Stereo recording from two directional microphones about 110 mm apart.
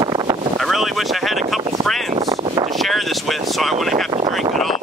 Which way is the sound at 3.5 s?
Centre (ahead or behind).